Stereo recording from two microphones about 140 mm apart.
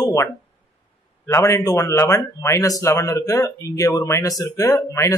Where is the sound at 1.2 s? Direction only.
20° left (ahead or behind).